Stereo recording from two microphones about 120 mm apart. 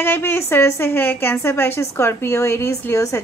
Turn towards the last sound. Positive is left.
turn(degrees=25)  # may be behind; listen again after turning